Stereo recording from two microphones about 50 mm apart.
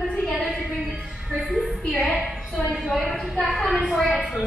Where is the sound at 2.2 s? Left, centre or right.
Centre.